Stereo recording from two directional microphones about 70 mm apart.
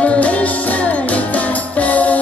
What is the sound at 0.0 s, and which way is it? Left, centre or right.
Music, centre.